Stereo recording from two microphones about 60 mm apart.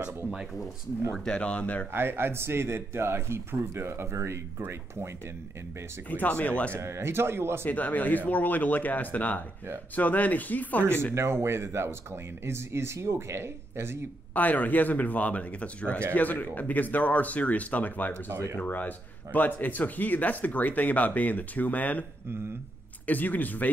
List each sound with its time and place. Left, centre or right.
1.2 s speech: centre
1.9 s speech: right
6.0 s speech: left
6.7 s speech: right
7.6 s speech: left
11.1 s speech: right
14.3 s speech: left
23.0 s speech: left